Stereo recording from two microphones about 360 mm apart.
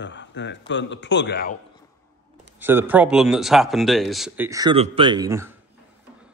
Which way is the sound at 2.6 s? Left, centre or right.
Centre.